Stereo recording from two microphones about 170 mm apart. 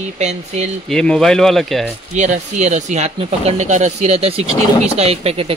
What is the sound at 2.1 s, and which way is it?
Speech, 45° right (ahead or behind).